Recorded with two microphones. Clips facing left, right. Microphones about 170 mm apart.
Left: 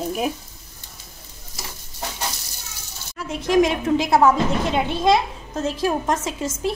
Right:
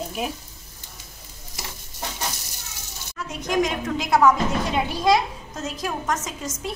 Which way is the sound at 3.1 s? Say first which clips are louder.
Left 5 dB; 30° left (ahead or behind).